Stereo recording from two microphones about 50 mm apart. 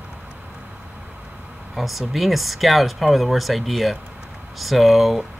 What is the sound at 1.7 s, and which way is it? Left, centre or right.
Speech, centre.